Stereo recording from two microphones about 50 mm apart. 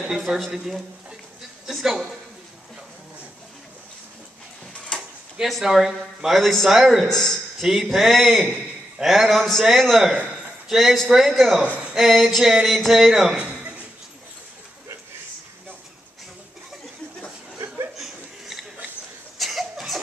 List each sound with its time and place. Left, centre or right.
0.3 s speech: centre
1.7 s a sound: centre
4.9 s drawer open or close: centre
5.4 s a man's voice: centre
7.1 s a man's voice: centre
7.6 s a man's voice: centre
13.4 s a sound: right
17.9 s chuckle: centre
19.3 s a sound: centre